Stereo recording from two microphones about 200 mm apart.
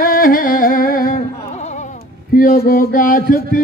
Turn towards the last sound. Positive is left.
turn(degrees=45)  # may be behind; listen again after turning